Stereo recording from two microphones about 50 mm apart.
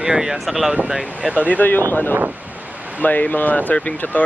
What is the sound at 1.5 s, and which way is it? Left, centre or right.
Speech, left.